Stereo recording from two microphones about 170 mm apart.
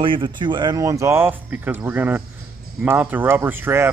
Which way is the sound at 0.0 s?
30° right (ahead or behind).